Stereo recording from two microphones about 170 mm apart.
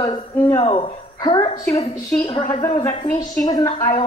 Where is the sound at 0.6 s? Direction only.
30° left (ahead or behind).